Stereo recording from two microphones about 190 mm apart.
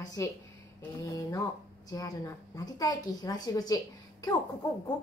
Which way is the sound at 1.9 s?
20° left (ahead or behind).